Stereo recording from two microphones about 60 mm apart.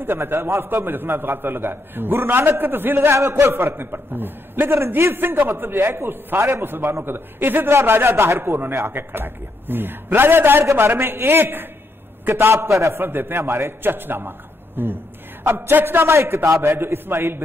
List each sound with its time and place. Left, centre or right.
0.0 s a man's voice: right
3.2 s a man's voice: right
4.7 s a man's voice: right
13.0 s a man's voice: right